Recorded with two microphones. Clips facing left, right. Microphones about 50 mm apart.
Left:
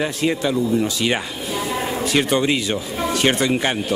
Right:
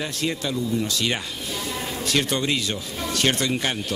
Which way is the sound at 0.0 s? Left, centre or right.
Centre.